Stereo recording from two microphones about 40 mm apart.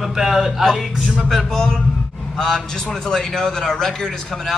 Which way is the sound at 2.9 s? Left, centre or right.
Centre.